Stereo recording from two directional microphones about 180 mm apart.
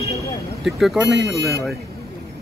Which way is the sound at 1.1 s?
75° right (ahead or behind).